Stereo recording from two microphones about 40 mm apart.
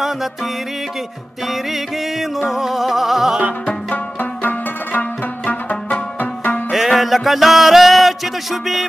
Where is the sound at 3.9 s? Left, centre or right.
Left.